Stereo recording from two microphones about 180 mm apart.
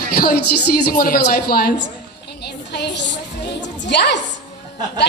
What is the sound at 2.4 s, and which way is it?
Music, 70° left (ahead or behind).